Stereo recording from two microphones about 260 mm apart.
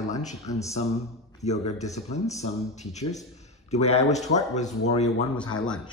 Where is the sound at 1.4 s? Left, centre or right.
Left.